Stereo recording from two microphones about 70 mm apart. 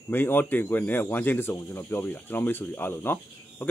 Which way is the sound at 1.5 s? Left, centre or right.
Left.